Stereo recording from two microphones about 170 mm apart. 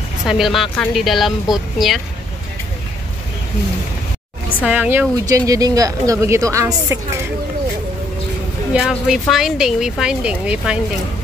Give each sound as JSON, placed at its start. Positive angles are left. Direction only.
{"t": 0.3, "sound": "speech", "side_deg": 0}
{"t": 4.6, "sound": "speech", "side_deg": -10}
{"t": 8.7, "sound": "speech", "side_deg": -5}